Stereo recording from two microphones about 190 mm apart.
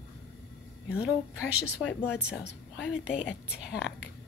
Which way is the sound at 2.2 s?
5° right (ahead or behind).